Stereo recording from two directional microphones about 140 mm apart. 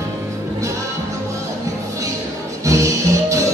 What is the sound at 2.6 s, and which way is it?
Music, 20° right (ahead or behind).